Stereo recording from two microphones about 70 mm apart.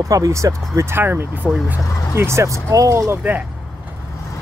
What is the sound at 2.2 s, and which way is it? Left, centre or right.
Speech, right.